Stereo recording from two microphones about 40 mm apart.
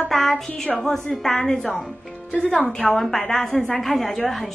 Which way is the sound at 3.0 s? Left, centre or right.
Centre.